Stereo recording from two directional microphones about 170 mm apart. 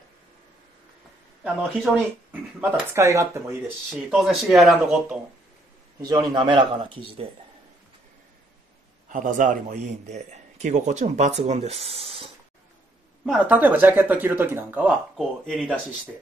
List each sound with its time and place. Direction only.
1.4 s speech: 5° right (ahead or behind)
3.9 s speech: centre (ahead or behind)
5.9 s a man's voice: 25° right (ahead or behind)
9.1 s a man's voice: 50° right (ahead or behind); by 12.3 s 35° right (ahead or behind)
13.2 s speech: 5° right (ahead or behind)